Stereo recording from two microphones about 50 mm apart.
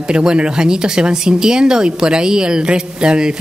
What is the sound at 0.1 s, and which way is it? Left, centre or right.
Speech, centre.